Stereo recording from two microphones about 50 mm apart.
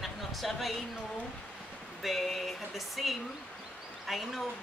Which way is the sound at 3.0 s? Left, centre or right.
Centre.